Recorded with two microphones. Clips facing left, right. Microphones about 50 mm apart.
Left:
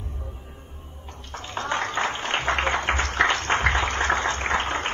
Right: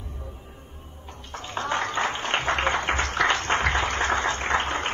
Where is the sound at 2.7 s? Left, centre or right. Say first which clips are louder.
Left 1 dB; left.